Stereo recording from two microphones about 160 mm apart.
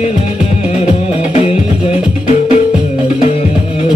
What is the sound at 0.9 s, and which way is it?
Music, 45° left (ahead or behind).